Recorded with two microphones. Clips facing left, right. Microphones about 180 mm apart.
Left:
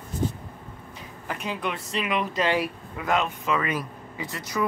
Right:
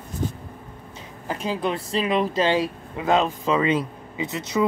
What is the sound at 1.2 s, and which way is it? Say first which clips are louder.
Speech: right 5 dB; 30° right (ahead or behind).